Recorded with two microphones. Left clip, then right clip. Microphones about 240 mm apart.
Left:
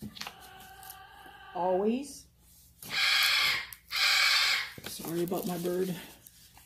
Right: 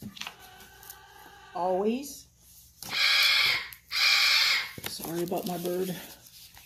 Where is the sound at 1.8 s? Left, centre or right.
Centre.